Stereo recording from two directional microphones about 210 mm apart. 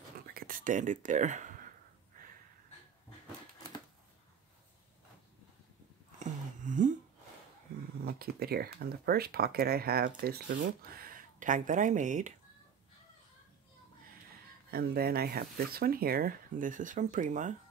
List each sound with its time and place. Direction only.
0.3 s speech: 45° right (ahead or behind)
6.1 s a sound: 35° right (ahead or behind)
8.0 s speech: 45° right (ahead or behind)
14.7 s speech: 45° right (ahead or behind)